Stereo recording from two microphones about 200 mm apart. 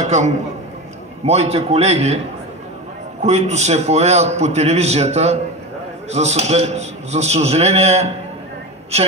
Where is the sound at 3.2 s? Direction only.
35° right (ahead or behind).